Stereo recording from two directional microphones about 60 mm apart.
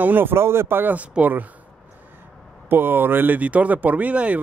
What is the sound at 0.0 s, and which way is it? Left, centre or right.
Speech, right.